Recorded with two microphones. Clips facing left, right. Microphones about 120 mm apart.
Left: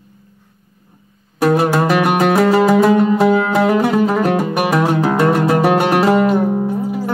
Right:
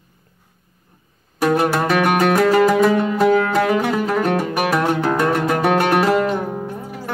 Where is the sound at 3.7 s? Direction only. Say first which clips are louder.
Left 4 dB; 5° left (ahead or behind).